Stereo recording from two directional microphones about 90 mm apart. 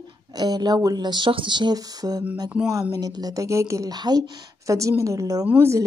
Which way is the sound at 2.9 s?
45° right (ahead or behind).